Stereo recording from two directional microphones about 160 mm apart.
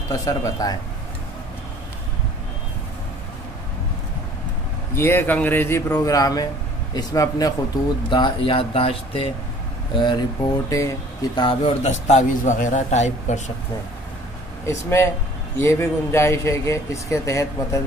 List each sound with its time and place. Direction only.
0.2 s speech: 25° left (ahead or behind)
4.9 s speech: 15° left (ahead or behind)
11.3 s speech: 30° left (ahead or behind)
11.8 s a man's voice: 45° left (ahead or behind)
14.7 s speech: 15° left (ahead or behind)